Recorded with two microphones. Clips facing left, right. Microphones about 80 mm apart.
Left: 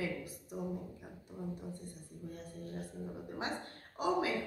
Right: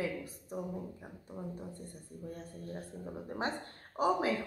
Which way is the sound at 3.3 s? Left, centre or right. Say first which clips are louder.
Right 4 dB; right.